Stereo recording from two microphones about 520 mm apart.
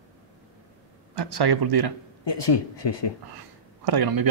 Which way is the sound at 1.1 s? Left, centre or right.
Right.